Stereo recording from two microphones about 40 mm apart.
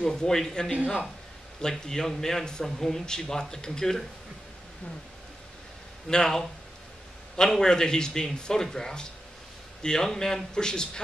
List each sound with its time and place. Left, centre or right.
0.0 s speech: centre
6.0 s speech: centre